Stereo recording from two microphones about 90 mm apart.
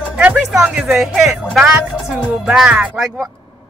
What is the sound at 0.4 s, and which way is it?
Music, 5° right (ahead or behind).